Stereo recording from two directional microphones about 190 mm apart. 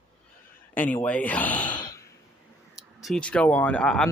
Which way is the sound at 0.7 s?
10° left (ahead or behind).